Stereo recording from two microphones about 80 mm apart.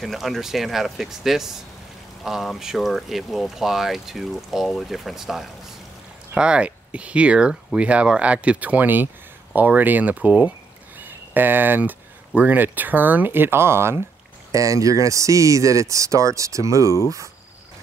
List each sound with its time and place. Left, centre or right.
0.0 s speech: centre; by 13.9 s right
14.5 s speech: right